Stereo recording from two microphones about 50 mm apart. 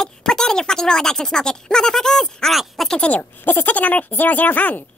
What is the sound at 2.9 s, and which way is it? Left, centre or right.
Speech, left.